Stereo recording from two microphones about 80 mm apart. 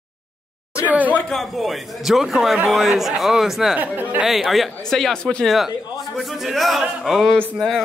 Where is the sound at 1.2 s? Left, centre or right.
Centre.